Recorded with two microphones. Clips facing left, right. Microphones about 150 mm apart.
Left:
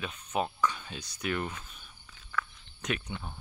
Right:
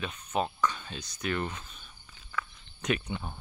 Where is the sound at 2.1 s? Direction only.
5° right (ahead or behind).